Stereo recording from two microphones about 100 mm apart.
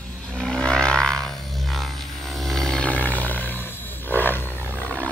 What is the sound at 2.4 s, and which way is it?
Wild animals, centre (ahead or behind).